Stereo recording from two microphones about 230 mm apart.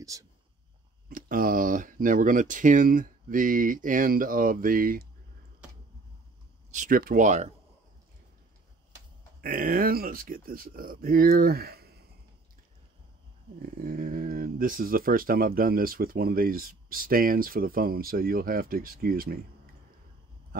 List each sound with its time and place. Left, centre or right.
0.1 s speech: centre
1.0 s speech: right
6.7 s speech: right
9.4 s speech: right
13.6 s speech: right